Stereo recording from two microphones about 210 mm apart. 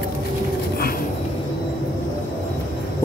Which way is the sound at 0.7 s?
45° left (ahead or behind).